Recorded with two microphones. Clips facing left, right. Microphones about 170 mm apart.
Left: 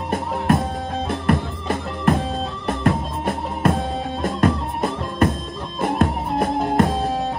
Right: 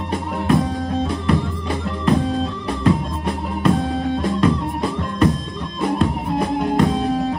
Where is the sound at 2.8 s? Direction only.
50° left (ahead or behind).